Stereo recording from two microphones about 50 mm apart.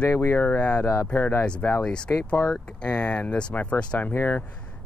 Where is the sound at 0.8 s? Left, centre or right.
Left.